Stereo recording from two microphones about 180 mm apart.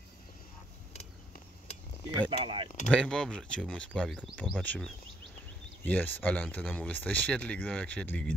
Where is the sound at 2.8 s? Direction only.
5° left (ahead or behind).